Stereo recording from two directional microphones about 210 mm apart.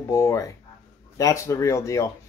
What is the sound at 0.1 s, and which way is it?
Speech, 15° left (ahead or behind).